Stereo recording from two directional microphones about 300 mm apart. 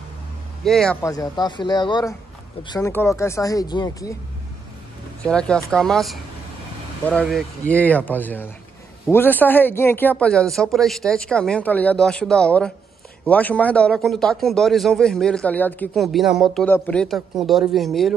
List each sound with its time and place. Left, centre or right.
0.7 s a man's voice: centre
5.2 s speech: centre